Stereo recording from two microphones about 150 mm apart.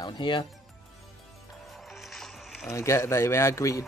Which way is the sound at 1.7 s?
Centre (ahead or behind).